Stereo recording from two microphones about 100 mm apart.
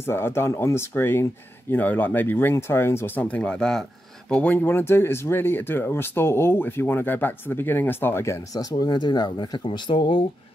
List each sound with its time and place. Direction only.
0.0 s speech: 25° left (ahead or behind)
3.3 s speech: 10° left (ahead or behind)
8.5 s speech: 40° left (ahead or behind); by 10.2 s 55° left (ahead or behind)